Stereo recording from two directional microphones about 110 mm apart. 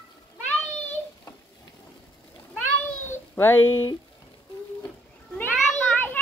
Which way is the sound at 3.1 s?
20° left (ahead or behind).